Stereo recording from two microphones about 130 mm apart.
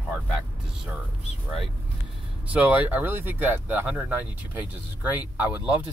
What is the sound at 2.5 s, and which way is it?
Speech, 10° right (ahead or behind).